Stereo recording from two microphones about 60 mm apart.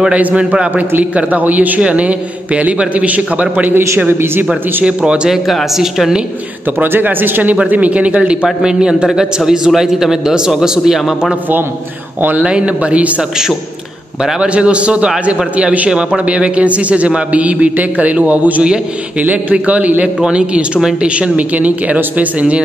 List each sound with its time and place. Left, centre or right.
0.1 s a man's voice: right
4.8 s a man's voice: centre
5.3 s a man's voice: centre
6.8 s a man's voice: right; by 11.3 s centre
12.2 s speech: right
12.4 s a man's voice: centre
14.2 s a man's voice: centre